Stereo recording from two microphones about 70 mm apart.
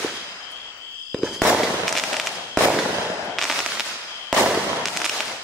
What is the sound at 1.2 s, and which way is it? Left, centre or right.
Fireworks, centre.